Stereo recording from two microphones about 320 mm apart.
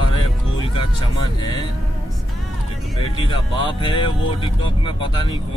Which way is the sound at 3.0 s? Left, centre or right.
Centre.